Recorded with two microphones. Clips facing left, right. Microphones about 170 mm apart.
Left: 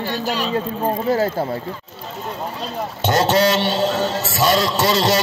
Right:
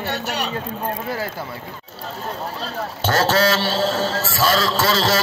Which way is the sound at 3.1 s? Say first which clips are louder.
Left 2 dB; 20° left (ahead or behind).